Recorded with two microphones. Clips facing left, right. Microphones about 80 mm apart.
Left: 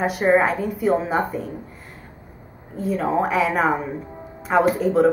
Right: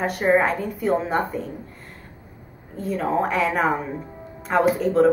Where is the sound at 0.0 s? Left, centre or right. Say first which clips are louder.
Left 2 dB; centre.